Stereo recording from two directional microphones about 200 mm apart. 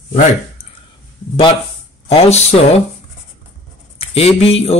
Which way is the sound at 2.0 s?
30° left (ahead or behind).